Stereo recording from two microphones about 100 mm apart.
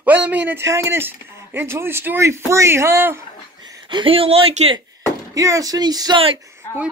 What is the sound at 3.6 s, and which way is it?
Speech, 50° right (ahead or behind).